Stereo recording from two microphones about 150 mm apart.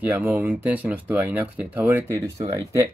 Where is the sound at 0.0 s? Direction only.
10° right (ahead or behind).